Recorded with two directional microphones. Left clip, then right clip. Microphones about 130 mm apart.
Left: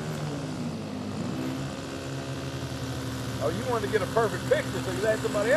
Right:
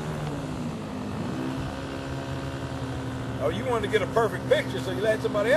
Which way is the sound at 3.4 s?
55° right (ahead or behind).